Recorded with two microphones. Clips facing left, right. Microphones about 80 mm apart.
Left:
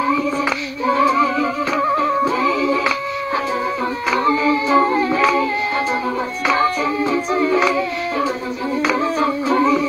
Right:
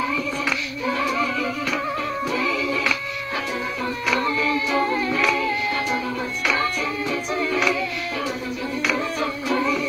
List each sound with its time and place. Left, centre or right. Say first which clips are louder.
0.8 s music: left 8 dB; left
4.1 s music: left 6 dB; left
6.6 s music: left 7 dB; left